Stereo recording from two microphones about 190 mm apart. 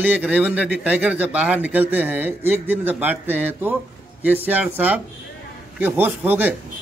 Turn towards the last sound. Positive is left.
turn(degrees=-10)  # may be behind; listen again after turning